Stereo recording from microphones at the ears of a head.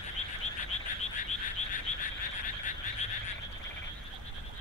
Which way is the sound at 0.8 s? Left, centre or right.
Left.